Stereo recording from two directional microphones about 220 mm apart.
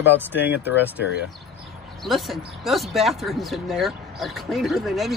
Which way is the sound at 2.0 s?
Centre (ahead or behind).